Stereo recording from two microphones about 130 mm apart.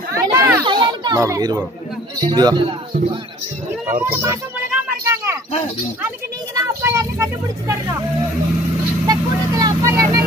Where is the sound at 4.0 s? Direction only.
15° right (ahead or behind).